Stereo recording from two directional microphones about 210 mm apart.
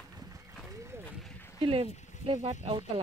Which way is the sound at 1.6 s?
25° right (ahead or behind).